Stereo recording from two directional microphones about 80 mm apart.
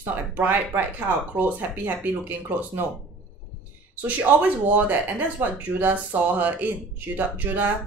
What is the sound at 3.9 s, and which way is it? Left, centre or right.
Speech, right.